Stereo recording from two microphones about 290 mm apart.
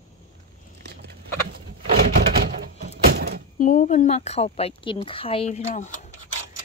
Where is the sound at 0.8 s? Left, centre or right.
Right.